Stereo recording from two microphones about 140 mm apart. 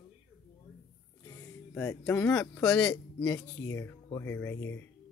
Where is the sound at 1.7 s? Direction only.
15° left (ahead or behind).